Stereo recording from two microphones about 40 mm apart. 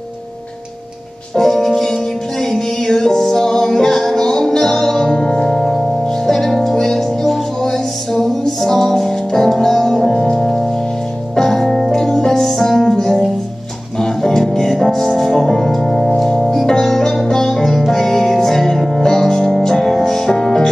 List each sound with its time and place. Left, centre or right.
1.3 s music: centre
5.6 s music: centre